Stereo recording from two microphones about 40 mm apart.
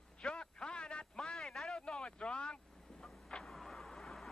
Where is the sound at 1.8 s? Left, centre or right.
Left.